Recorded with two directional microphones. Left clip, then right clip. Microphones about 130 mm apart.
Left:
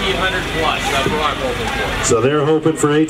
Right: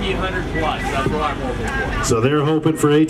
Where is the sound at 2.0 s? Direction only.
25° right (ahead or behind).